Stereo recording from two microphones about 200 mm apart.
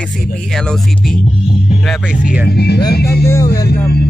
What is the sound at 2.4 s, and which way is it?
Speech, 55° left (ahead or behind).